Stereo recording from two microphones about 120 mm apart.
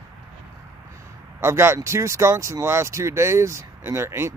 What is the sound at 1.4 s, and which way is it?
Speech, 20° right (ahead or behind).